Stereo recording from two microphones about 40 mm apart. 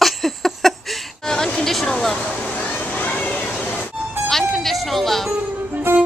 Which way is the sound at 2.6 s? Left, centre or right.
Left.